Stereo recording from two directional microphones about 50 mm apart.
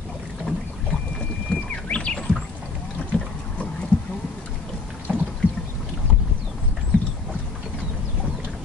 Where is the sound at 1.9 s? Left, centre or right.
Centre.